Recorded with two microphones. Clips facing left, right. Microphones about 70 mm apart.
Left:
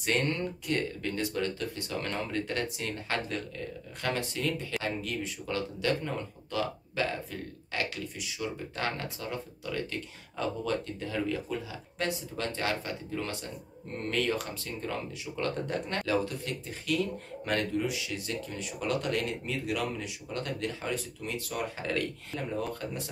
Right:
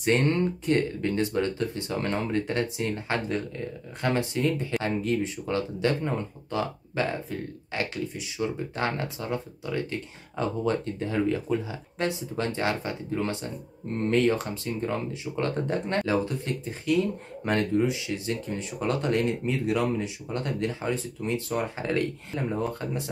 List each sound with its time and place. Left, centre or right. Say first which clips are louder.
0.0 s speech: right 6 dB; right